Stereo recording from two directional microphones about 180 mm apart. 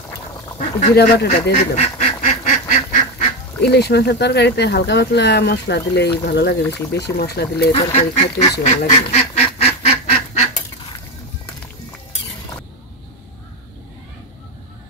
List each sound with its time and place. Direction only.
0.6 s speech: 40° left (ahead or behind)
0.9 s speech: 65° left (ahead or behind)
1.5 s duck: 35° left (ahead or behind)
3.6 s speech: 65° left (ahead or behind)
7.7 s duck: 35° left (ahead or behind)